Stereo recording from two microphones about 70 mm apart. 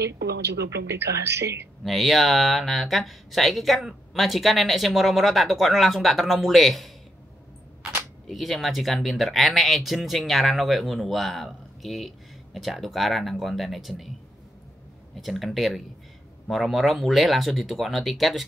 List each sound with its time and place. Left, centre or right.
0.7 s speech: right
1.9 s speech: centre
8.3 s speech: centre
15.1 s speech: centre